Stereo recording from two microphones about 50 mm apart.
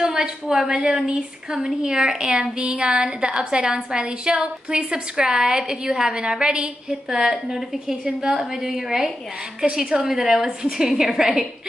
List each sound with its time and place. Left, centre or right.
0.0 s a woman's voice: centre